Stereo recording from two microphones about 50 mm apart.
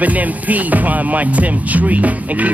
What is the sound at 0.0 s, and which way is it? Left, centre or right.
Music, right.